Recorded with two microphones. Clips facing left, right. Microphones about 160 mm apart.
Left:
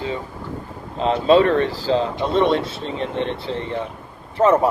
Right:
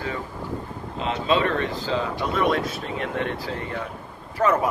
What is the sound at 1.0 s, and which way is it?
Speech, 35° left (ahead or behind).